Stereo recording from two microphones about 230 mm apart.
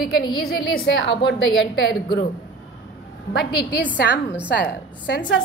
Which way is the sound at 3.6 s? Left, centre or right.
Left.